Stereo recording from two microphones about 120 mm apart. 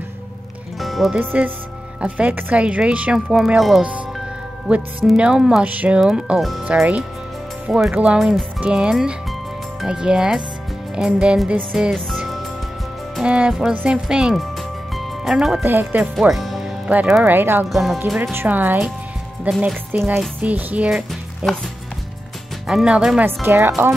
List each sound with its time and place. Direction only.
0.7 s music: centre (ahead or behind)
1.2 s speech: 15° right (ahead or behind)
13.1 s speech: 10° right (ahead or behind)
15.0 s music: centre (ahead or behind)
15.6 s speech: 15° right (ahead or behind)
16.2 s music: centre (ahead or behind)
17.2 s speech: 15° right (ahead or behind)
17.6 s speech: centre (ahead or behind)
18.1 s speech: 20° right (ahead or behind)
22.7 s speech: 5° right (ahead or behind)